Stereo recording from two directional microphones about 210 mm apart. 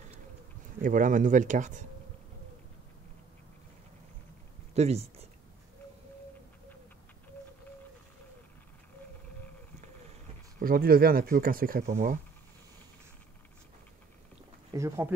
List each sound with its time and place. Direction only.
0.8 s speech: 40° right (ahead or behind)
4.7 s speech: 30° right (ahead or behind)
10.6 s speech: 45° right (ahead or behind)
14.7 s speech: 15° right (ahead or behind)